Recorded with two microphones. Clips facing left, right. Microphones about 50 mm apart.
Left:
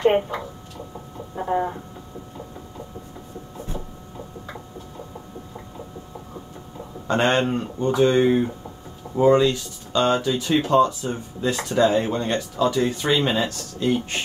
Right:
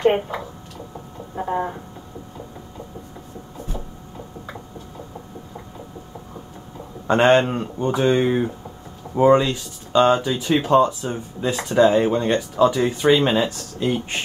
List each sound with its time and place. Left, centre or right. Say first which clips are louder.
0.0 s a sound: even; centre
7.1 s speech: right 5 dB; centre
13.1 s speech: right 4 dB; centre